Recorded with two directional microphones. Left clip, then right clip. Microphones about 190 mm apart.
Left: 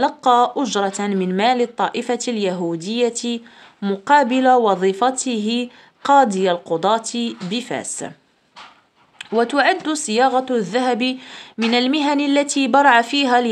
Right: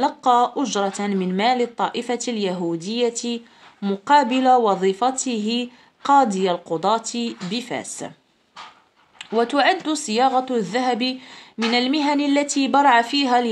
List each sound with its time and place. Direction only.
0.0 s speech: 25° left (ahead or behind)
9.2 s speech: 25° left (ahead or behind)